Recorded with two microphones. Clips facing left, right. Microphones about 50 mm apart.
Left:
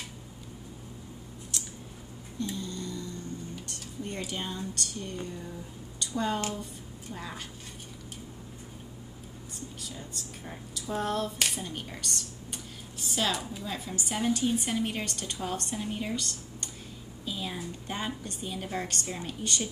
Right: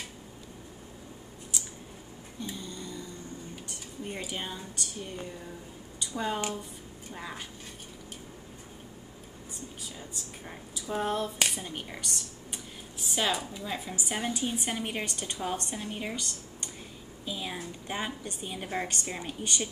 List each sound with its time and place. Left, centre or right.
2.4 s a sound: centre
3.6 s speech: centre
9.9 s speech: centre
13.1 s speech: centre
15.7 s speech: centre
17.2 s a sound: centre
17.8 s a woman's voice: centre